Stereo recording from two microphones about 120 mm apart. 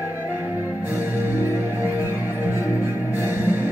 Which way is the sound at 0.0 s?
15° right (ahead or behind).